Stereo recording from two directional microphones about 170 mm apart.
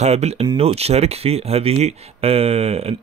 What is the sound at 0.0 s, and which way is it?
Speech, 40° right (ahead or behind).